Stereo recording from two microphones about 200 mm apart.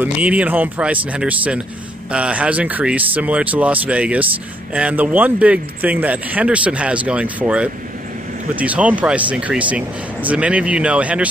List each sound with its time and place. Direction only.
0.0 s a man's voice: 5° right (ahead or behind)